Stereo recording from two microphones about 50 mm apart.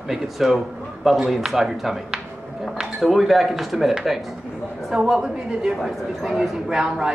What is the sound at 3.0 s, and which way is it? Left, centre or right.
A woman's voice, centre.